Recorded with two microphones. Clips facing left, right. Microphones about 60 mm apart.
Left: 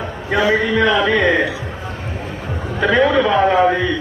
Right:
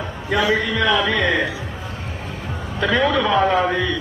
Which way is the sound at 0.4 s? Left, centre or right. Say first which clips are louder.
Left 4 dB; left.